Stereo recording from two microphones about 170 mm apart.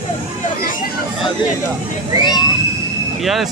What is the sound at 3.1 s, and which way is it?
Speech, centre (ahead or behind).